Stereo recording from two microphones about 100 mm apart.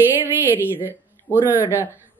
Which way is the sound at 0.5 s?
20° right (ahead or behind).